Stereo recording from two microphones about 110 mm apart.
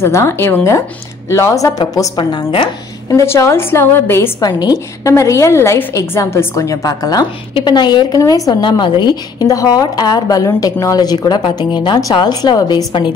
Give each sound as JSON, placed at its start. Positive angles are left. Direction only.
{"t": 0.0, "sound": "a woman's voice", "side_deg": 25}
{"t": 2.1, "sound": "speech", "side_deg": 45}
{"t": 3.1, "sound": "a woman's voice", "side_deg": 30}
{"t": 4.4, "sound": "a woman's voice", "side_deg": 40}
{"t": 5.1, "sound": "a woman's voice", "side_deg": 30}
{"t": 12.9, "sound": "speech", "side_deg": 50}